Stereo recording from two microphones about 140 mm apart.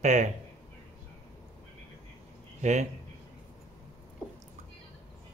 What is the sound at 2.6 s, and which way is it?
Speech, 60° right (ahead or behind).